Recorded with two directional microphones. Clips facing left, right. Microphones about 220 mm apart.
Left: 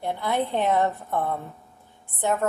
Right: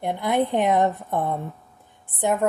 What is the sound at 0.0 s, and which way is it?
A woman's voice, 15° right (ahead or behind).